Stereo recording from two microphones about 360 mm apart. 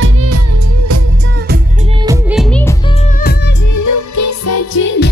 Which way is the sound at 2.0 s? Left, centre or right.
Centre.